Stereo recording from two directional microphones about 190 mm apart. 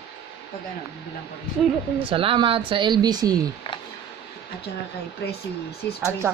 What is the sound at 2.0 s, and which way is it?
Speech, 30° right (ahead or behind).